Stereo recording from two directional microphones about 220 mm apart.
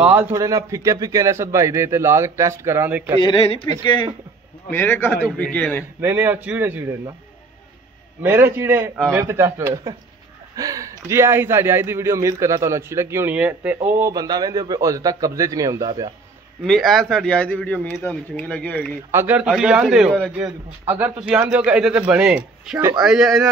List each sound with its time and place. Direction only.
0.0 s speech: 10° right (ahead or behind)
3.2 s speech: 20° left (ahead or behind)
4.6 s a man's voice: 10° left (ahead or behind)
5.9 s speech: 10° right (ahead or behind)
8.2 s speech: 10° right (ahead or behind)
16.6 s a man's voice: centre (ahead or behind)
19.1 s a man's voice: 5° right (ahead or behind)